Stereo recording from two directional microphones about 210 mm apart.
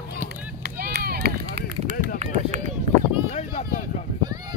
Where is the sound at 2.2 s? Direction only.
35° right (ahead or behind).